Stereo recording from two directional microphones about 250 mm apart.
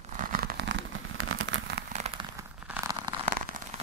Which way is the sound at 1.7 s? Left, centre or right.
Right.